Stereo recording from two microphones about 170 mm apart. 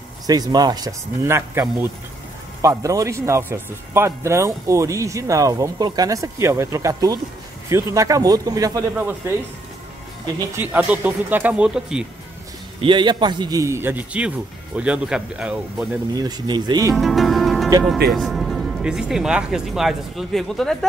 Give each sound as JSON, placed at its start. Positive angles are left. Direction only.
{"t": 0.3, "sound": "speech", "side_deg": -25}
{"t": 10.6, "sound": "speech", "side_deg": -10}
{"t": 12.8, "sound": "speech", "side_deg": -25}
{"t": 16.1, "sound": "speech", "side_deg": -25}
{"t": 16.9, "sound": "speech", "side_deg": 0}